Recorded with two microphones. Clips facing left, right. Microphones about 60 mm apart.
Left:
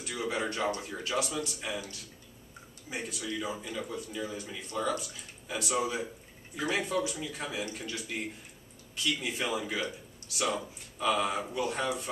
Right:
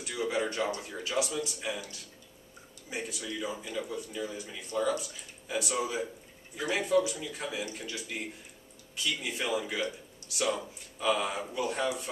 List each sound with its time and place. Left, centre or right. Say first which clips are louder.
0.0 s speech: right 2 dB; centre
2.9 s speech: left 1 dB; centre